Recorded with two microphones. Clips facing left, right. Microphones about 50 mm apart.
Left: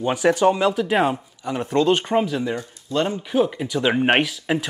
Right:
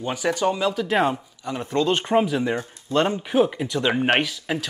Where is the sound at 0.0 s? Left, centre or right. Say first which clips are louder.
Left 5 dB; centre.